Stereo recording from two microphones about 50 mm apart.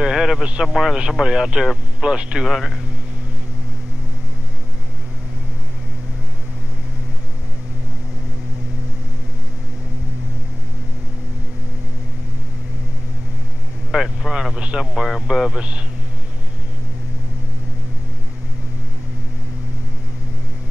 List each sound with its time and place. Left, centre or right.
0.0 s speech: centre
2.0 s speech: centre
2.4 s speech: centre
13.9 s speech: centre
14.5 s speech: centre
15.0 s speech: centre